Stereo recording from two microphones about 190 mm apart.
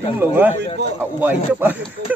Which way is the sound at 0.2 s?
10° right (ahead or behind).